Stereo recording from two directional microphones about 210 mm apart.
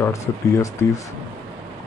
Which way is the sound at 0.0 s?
15° left (ahead or behind).